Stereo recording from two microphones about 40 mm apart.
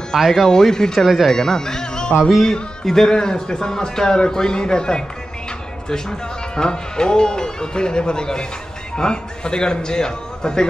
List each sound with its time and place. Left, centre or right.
0.1 s speech: centre
0.5 s a man's voice: centre
0.9 s speech: centre
1.3 s speech: centre
2.1 s speech: centre
2.4 s a man's voice: centre